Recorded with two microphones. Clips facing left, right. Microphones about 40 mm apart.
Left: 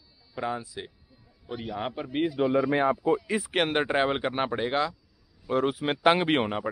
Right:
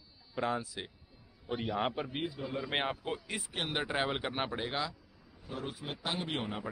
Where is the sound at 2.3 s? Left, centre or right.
Left.